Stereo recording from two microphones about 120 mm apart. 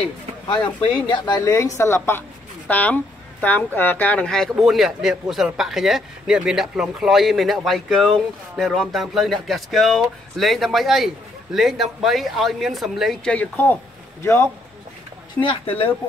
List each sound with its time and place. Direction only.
1.0 s a woman's voice: 40° left (ahead or behind); by 13.7 s 10° left (ahead or behind)
14.2 s a woman's voice: 20° left (ahead or behind)
15.4 s speech: 50° left (ahead or behind)